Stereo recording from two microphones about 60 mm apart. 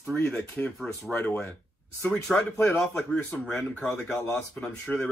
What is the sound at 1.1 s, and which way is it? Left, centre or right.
Speech, left.